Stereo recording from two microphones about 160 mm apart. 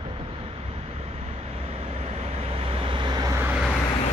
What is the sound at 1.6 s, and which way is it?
Vehicle, 40° right (ahead or behind).